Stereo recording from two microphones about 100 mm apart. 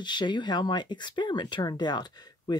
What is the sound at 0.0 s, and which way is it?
Speech, 50° left (ahead or behind).